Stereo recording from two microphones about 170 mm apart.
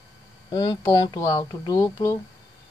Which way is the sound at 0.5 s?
25° left (ahead or behind).